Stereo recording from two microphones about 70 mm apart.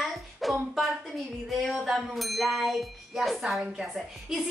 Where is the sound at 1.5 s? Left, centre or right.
Centre.